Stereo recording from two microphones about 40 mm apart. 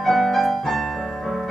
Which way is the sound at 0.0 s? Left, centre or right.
Centre.